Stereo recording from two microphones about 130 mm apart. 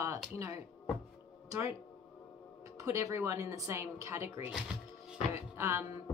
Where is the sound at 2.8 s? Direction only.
25° right (ahead or behind).